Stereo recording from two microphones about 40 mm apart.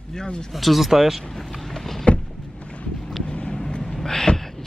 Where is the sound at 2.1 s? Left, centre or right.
Left.